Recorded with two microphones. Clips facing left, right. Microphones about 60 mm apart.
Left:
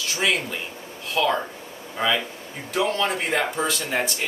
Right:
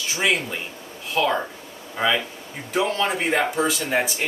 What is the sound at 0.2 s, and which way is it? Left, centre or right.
Speech, centre.